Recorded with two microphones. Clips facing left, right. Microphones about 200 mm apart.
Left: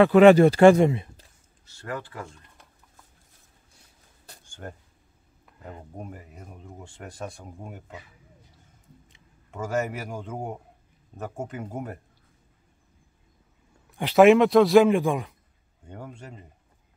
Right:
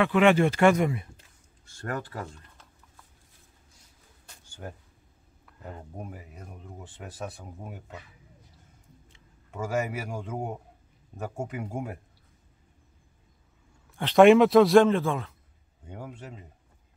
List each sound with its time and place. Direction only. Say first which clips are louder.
0.0 s speech: left 7 dB; 35° left (ahead or behind)
1.7 s speech: right 1 dB; 50° right (ahead or behind)
4.5 s a sound: left 1 dB; 5° right (ahead or behind)
5.9 s a man's voice: left 1 dB; 5° right (ahead or behind)
9.5 s a man's voice: left 2 dB; 10° right (ahead or behind)
13.8 s a sound: left 2 dB; 15° left (ahead or behind)
14.1 s speech: even; centre (ahead or behind)
14.9 s speech: left 3 dB; 15° left (ahead or behind)
15.8 s speech: even; 5° right (ahead or behind)